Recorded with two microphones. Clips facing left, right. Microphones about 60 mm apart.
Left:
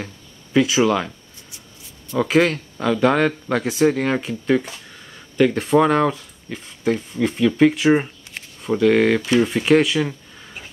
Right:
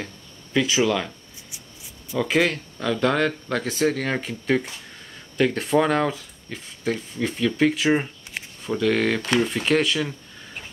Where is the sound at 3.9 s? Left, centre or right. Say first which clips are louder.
Left 5 dB; left.